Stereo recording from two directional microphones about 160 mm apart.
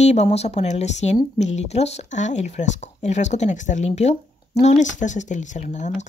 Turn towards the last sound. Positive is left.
turn(degrees=50)  # may be behind; listen again after turning